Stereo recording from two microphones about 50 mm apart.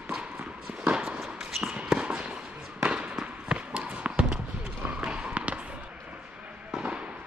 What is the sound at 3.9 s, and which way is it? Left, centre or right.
Basketball bounce, right.